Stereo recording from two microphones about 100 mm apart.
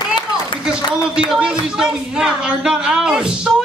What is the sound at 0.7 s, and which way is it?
A man's voice, 5° right (ahead or behind).